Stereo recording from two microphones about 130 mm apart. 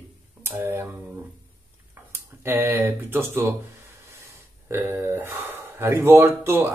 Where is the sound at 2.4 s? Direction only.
15° right (ahead or behind).